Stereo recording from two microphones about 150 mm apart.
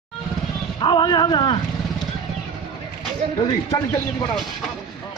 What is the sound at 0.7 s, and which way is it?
Speech, 30° left (ahead or behind).